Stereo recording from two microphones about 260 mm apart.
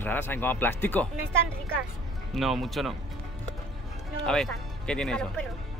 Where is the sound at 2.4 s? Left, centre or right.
Centre.